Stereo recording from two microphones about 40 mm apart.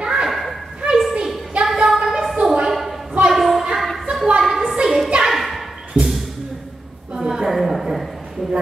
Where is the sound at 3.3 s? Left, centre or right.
Centre.